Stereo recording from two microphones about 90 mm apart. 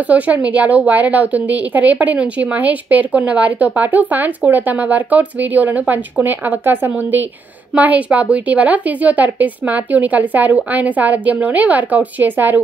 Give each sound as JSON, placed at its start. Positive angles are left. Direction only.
{"t": 0.1, "sound": "a woman's voice", "side_deg": -15}